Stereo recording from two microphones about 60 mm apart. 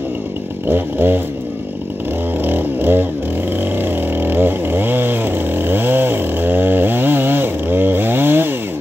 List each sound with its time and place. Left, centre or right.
0.7 s a sound: right
2.4 s music: right
3.5 s vehicle: right